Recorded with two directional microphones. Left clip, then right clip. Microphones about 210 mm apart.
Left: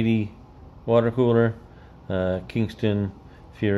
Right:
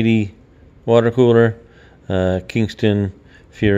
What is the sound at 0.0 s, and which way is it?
Speech, 40° right (ahead or behind).